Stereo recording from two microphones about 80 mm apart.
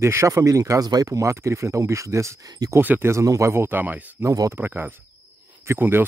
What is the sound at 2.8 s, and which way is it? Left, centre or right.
Speech, right.